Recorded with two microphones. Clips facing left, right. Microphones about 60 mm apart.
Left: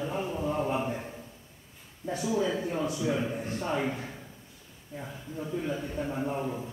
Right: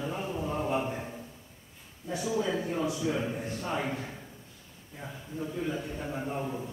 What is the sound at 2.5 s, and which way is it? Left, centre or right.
Speech, centre.